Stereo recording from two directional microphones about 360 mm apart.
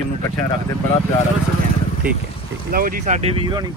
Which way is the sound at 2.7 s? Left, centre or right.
Right.